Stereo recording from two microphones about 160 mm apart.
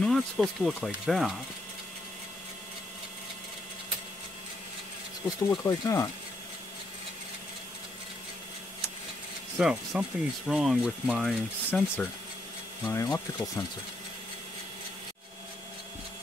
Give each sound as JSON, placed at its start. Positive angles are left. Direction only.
{"t": 0.0, "sound": "speech", "side_deg": 0}
{"t": 5.5, "sound": "speech", "side_deg": 20}
{"t": 9.6, "sound": "speech", "side_deg": -5}
{"t": 12.9, "sound": "speech", "side_deg": 20}